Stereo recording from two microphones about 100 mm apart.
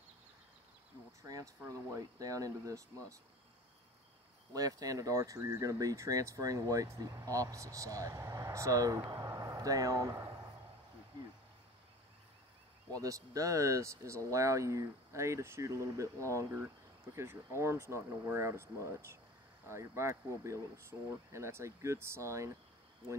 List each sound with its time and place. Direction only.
1.2 s speech: 35° right (ahead or behind)
4.6 s speech: 35° right (ahead or behind)
9.0 s a sound: 40° right (ahead or behind)
12.9 s speech: 35° right (ahead or behind)